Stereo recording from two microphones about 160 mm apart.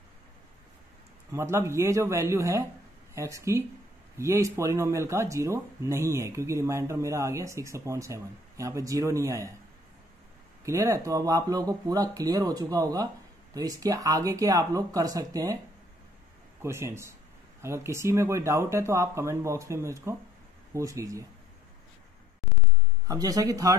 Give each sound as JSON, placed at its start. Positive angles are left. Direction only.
{"t": 1.3, "sound": "speech", "side_deg": -15}
{"t": 10.6, "sound": "speech", "side_deg": -20}
{"t": 16.6, "sound": "speech", "side_deg": -15}
{"t": 23.0, "sound": "speech", "side_deg": -25}